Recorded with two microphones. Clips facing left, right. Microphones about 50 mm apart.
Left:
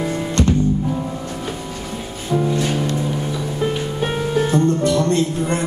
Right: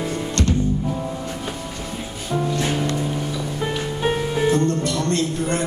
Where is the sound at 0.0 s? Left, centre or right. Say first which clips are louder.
Left 4 dB; centre.